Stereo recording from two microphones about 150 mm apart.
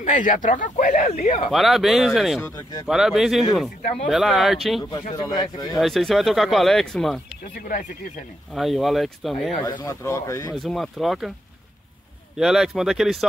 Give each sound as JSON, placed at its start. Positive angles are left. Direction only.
{"t": 0.0, "sound": "speech", "side_deg": 60}
{"t": 1.5, "sound": "speech", "side_deg": 0}
{"t": 2.4, "sound": "a man's voice", "side_deg": 20}
{"t": 2.9, "sound": "speech", "side_deg": 0}
{"t": 5.1, "sound": "a man's voice", "side_deg": 30}
{"t": 5.8, "sound": "speech", "side_deg": 0}
{"t": 7.5, "sound": "speech", "side_deg": 75}
{"t": 8.5, "sound": "speech", "side_deg": 0}
{"t": 9.7, "sound": "a man's voice", "side_deg": 25}
{"t": 10.5, "sound": "speech", "side_deg": 0}
{"t": 12.4, "sound": "speech", "side_deg": -5}